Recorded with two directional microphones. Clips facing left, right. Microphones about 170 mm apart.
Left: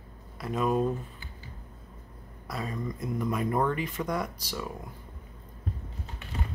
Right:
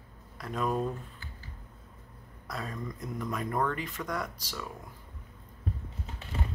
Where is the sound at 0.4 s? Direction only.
5° left (ahead or behind).